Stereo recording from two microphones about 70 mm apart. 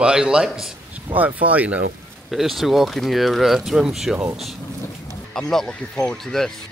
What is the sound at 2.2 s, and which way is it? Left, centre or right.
Speech, centre.